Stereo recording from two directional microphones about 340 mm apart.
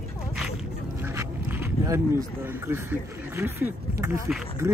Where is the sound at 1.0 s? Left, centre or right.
Centre.